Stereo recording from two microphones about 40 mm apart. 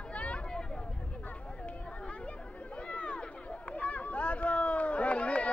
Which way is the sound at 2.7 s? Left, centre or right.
Left.